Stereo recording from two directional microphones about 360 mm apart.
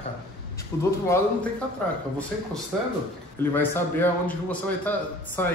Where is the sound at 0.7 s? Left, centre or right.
Centre.